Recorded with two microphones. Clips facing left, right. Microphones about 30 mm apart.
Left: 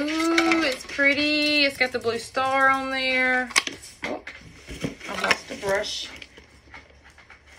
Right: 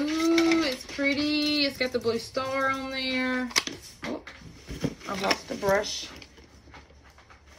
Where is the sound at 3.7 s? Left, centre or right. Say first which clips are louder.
Left 3 dB; left.